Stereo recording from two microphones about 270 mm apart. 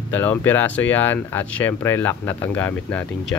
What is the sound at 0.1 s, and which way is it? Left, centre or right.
Speech, centre.